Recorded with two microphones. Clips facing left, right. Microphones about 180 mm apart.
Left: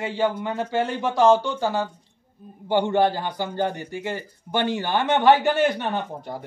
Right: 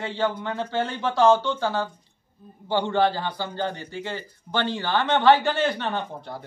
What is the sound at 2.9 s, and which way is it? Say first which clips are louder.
Speech: left 2 dB; 15° left (ahead or behind).